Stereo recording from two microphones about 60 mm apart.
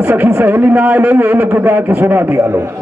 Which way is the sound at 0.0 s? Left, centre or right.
Right.